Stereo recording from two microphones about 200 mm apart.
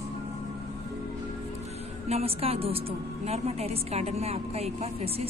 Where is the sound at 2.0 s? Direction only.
30° right (ahead or behind).